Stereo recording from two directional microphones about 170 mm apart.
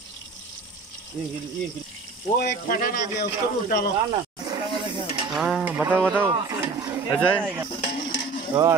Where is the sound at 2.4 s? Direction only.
65° left (ahead or behind).